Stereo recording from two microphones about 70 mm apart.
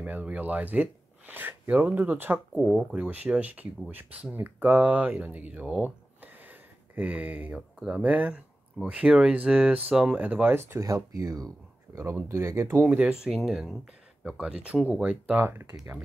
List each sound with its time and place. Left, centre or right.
0.0 s speech: centre
2.5 s speech: centre
2.9 s speech: right
8.9 s speech: centre
10.7 s speech: right
11.1 s speech: right
12.0 s speech: right
12.8 s speech: centre
15.3 s speech: right